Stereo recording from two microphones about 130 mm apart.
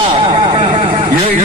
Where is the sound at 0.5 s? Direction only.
50° right (ahead or behind).